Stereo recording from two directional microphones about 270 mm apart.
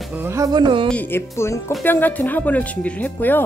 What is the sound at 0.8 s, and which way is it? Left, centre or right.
Speech, centre.